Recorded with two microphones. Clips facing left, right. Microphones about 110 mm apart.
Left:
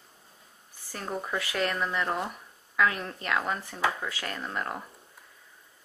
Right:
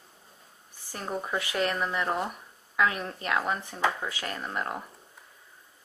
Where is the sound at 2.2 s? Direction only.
20° right (ahead or behind).